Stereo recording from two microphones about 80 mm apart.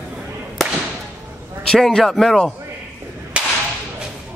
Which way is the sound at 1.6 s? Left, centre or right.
Centre.